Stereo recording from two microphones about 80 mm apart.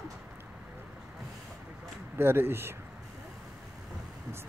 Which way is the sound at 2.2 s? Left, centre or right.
Right.